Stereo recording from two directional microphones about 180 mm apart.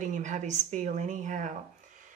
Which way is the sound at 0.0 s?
45° right (ahead or behind).